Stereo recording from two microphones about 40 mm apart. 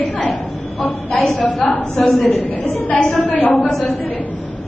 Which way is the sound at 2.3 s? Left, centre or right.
Left.